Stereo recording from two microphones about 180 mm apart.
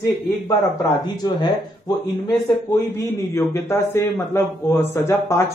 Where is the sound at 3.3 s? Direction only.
15° left (ahead or behind).